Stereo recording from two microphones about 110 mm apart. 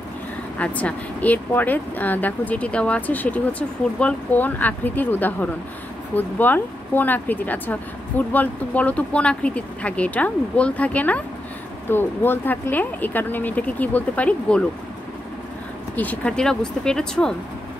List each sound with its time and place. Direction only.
0.6 s speech: 10° left (ahead or behind)
16.0 s speech: 10° left (ahead or behind)